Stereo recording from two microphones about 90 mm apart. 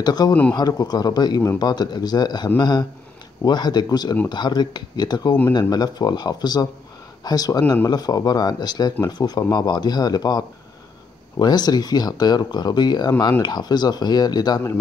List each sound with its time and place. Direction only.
0.0 s speech: 50° left (ahead or behind)